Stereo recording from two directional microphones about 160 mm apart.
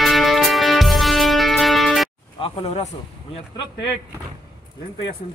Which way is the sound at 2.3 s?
35° left (ahead or behind).